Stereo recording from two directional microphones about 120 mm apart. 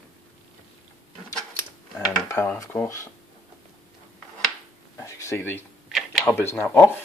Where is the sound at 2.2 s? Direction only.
20° left (ahead or behind).